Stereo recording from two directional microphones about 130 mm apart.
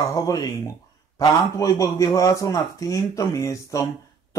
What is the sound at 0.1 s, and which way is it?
A man's voice, 25° left (ahead or behind).